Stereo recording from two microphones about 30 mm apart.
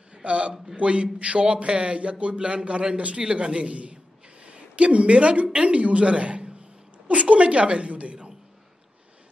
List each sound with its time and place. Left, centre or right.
0.1 s a man's voice: right